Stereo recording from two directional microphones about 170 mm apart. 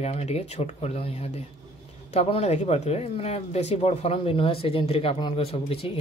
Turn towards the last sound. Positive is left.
turn(degrees=35)  # may be behind; listen again after turning